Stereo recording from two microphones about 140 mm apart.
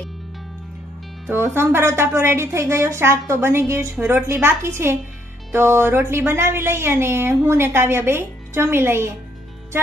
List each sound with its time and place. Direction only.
1.3 s speech: 15° right (ahead or behind)